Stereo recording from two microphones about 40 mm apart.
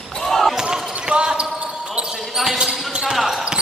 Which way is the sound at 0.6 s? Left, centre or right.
Right.